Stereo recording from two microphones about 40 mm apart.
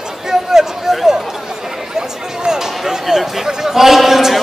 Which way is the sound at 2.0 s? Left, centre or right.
Centre.